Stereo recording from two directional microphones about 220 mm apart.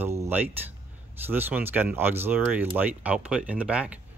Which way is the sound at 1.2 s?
10° right (ahead or behind).